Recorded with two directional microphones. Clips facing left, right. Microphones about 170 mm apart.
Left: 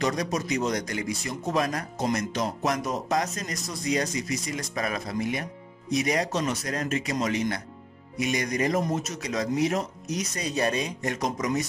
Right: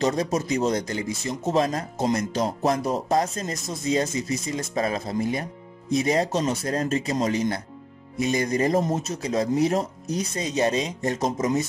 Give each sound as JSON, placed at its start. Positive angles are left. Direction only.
{"t": 0.0, "sound": "speech", "side_deg": -25}